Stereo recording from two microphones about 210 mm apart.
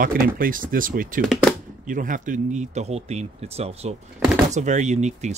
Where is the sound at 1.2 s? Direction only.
Centre (ahead or behind).